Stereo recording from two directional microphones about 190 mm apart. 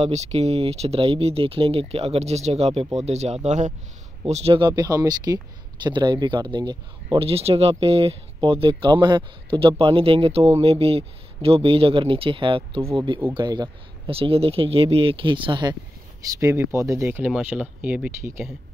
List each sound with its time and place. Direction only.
0.0 s speech: 35° right (ahead or behind)
16.3 s speech: 15° right (ahead or behind)